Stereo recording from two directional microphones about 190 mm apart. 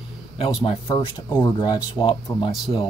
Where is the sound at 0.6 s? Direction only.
30° left (ahead or behind).